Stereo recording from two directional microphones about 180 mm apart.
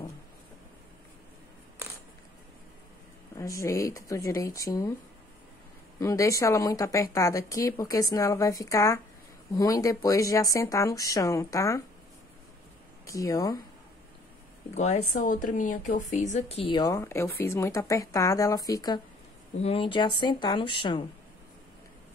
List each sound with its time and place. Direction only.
3.3 s speech: 15° left (ahead or behind)
5.9 s speech: 15° left (ahead or behind)
13.0 s speech: 15° left (ahead or behind)
14.7 s speech: 40° left (ahead or behind); by 18.9 s 20° left (ahead or behind)
19.6 s speech: 30° left (ahead or behind)